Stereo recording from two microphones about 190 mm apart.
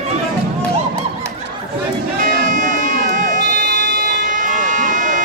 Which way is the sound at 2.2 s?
45° right (ahead or behind).